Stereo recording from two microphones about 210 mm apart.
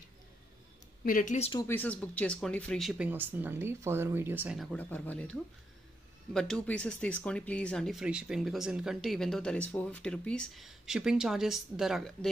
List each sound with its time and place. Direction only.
1.0 s speech: 40° left (ahead or behind)
1.5 s speech: 15° left (ahead or behind)